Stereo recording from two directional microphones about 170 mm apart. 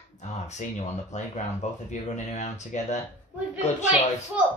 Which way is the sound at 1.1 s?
45° left (ahead or behind).